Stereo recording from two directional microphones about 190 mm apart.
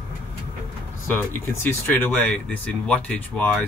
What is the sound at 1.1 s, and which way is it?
Speech, 10° left (ahead or behind).